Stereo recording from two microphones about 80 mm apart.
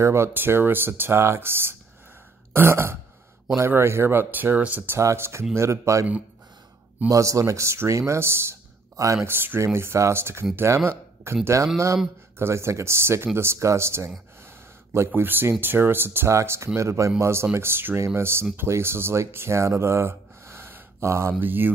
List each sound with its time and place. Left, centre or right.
0.0 s speech: right
4.9 s speech: right
7.1 s speech: right
9.2 s speech: right
21.4 s speech: right